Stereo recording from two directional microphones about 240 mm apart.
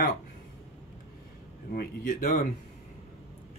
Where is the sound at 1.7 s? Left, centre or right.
Left.